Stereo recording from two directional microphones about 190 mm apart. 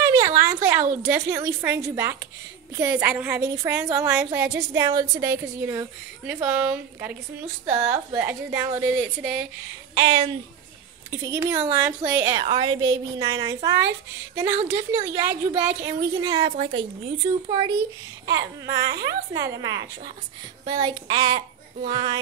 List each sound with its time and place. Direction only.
0.0 s a woman's voice: 15° right (ahead or behind)
11.1 s a woman's voice: 15° right (ahead or behind)
16.3 s speech: 30° right (ahead or behind)
18.8 s speech: 20° right (ahead or behind)